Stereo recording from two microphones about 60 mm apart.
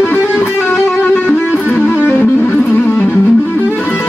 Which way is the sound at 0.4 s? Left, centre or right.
Left.